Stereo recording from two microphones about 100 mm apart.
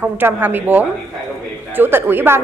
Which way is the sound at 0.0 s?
20° right (ahead or behind).